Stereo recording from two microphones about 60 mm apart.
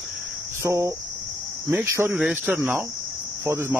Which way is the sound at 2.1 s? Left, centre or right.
Centre.